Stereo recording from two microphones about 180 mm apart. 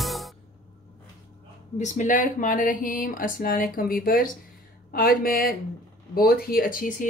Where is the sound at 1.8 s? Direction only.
45° left (ahead or behind).